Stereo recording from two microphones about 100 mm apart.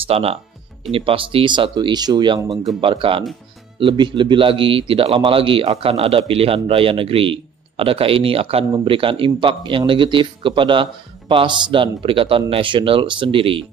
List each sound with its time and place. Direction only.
0.0 s speech: 80° right
0.9 s speech: 65° right (ahead or behind); by 2.6 s 50° right (ahead or behind)
2.8 s speech: 60° right (ahead or behind)
3.8 s speech: 50° right (ahead or behind); by 8.6 s 75° right (ahead or behind)
8.8 s speech: 60° right (ahead or behind)